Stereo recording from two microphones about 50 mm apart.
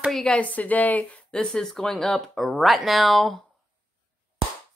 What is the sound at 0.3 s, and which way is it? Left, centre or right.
Speech, left.